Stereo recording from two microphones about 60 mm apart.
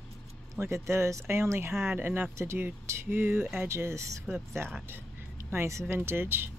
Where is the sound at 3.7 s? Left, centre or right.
Right.